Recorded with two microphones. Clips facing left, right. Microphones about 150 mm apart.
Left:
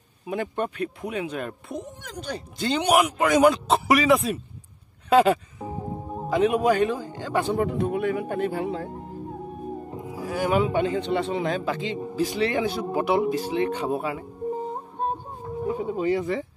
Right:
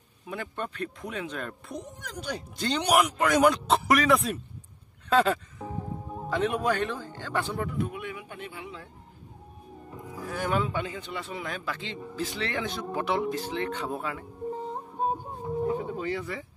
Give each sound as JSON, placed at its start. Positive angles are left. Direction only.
{"t": 0.3, "sound": "speech", "side_deg": 15}
{"t": 5.1, "sound": "speech", "side_deg": 10}
{"t": 5.7, "sound": "music", "side_deg": 25}
{"t": 6.2, "sound": "speech", "side_deg": 10}
{"t": 7.5, "sound": "speech", "side_deg": 25}
{"t": 7.9, "sound": "speech", "side_deg": 50}
{"t": 8.9, "sound": "music", "side_deg": 70}
{"t": 10.3, "sound": "speech", "side_deg": 10}
{"t": 11.2, "sound": "speech", "side_deg": 25}
{"t": 14.7, "sound": "music", "side_deg": -5}
{"t": 15.6, "sound": "speech", "side_deg": 15}